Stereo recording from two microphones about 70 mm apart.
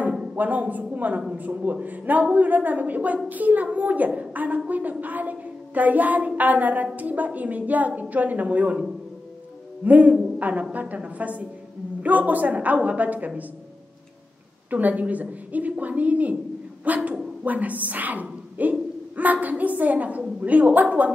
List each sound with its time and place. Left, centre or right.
0.3 s a woman's voice: right
9.8 s a woman's voice: right
14.7 s a woman's voice: right